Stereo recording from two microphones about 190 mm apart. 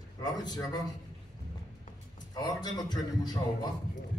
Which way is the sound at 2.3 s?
20° left (ahead or behind).